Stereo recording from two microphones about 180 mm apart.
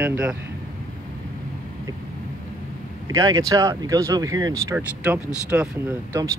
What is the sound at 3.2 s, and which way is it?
Speech, 20° right (ahead or behind).